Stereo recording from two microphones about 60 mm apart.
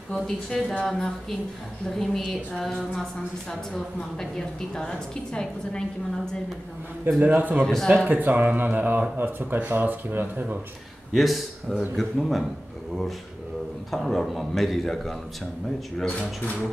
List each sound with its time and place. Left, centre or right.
0.1 s a woman's voice: centre
7.2 s speech: right
7.6 s a woman's voice: centre
8.1 s speech: right
11.1 s a man's voice: centre
13.9 s a man's voice: centre
16.1 s speech: centre